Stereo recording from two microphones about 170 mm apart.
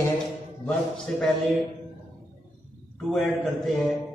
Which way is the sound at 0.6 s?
5° left (ahead or behind).